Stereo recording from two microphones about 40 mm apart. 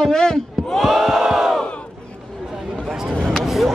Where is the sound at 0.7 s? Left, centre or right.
Centre.